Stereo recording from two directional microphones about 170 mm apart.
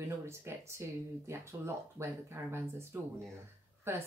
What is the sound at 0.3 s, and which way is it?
Speech, 15° right (ahead or behind).